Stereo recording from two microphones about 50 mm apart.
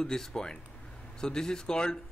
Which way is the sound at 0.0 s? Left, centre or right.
Centre.